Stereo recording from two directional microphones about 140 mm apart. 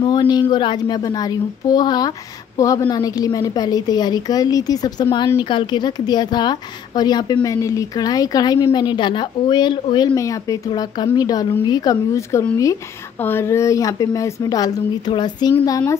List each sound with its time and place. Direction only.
0.0 s speech: 35° left (ahead or behind)